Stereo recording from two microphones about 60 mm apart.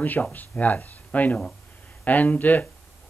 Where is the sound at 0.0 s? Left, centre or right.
Left.